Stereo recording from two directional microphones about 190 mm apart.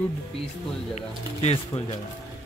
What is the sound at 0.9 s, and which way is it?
Speech, 35° left (ahead or behind).